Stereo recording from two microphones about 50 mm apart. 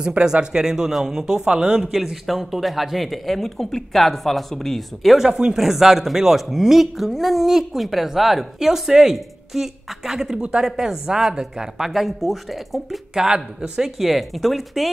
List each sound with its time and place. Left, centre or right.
0.0 s speech: centre
1.9 s speech: centre
13.1 s speech: centre